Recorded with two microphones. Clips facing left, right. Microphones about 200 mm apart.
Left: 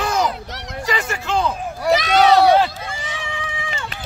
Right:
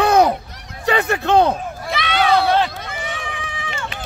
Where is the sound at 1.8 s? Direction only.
40° left (ahead or behind).